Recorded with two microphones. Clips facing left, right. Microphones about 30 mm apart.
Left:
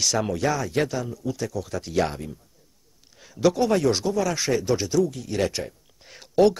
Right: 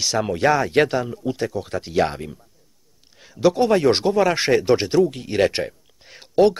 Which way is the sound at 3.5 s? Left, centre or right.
Right.